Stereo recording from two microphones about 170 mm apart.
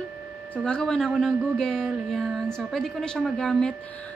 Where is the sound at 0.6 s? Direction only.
5° left (ahead or behind).